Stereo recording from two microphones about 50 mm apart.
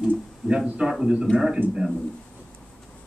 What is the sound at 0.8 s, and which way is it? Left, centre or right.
Speech, centre.